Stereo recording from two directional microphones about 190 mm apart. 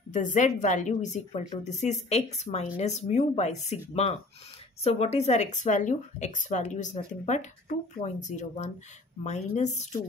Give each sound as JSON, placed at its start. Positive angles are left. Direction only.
{"t": 0.1, "sound": "speech", "side_deg": 40}